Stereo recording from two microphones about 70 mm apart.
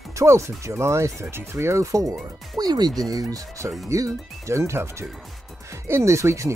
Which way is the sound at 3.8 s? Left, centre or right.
Right.